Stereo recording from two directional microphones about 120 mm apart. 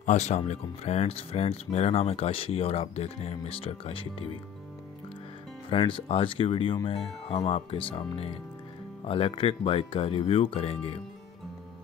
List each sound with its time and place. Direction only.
0.0 s speech: 70° left (ahead or behind); by 4.1 s 50° left (ahead or behind)
5.9 s speech: 50° left (ahead or behind)